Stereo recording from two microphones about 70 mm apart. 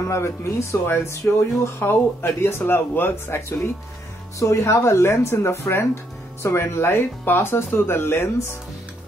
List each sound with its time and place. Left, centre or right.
0.1 s speech: left